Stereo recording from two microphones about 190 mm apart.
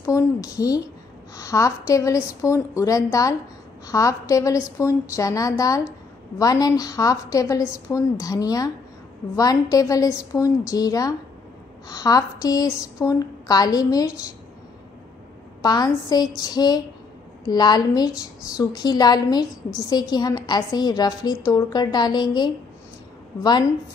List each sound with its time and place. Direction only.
0.0 s a woman's voice: 15° left (ahead or behind)
15.6 s a woman's voice: 20° left (ahead or behind)